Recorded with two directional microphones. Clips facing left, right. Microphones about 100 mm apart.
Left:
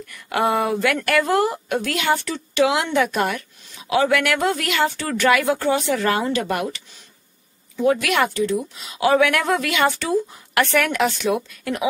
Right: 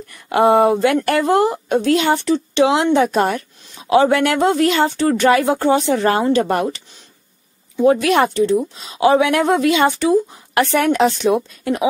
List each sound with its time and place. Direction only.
0.0 s a woman's voice: 30° right (ahead or behind)